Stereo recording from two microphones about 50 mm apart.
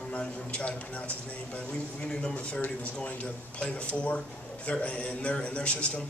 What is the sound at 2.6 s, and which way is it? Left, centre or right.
A man's voice, left.